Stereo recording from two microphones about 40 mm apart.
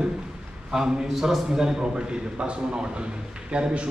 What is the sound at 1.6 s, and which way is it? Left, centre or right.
A man's voice, centre.